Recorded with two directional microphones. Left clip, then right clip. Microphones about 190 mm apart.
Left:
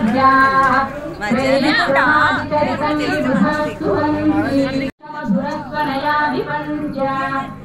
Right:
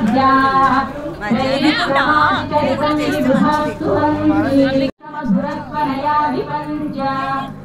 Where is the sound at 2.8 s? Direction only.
40° right (ahead or behind).